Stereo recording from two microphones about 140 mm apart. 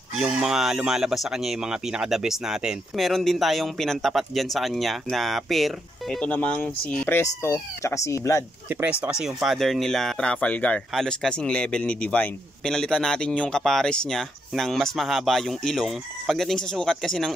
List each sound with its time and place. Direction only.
0.1 s speech: 5° right (ahead or behind); by 8.5 s 20° left (ahead or behind)
8.6 s speech: 10° right (ahead or behind)